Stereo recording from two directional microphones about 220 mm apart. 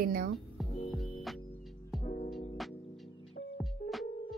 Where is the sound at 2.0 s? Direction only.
30° left (ahead or behind).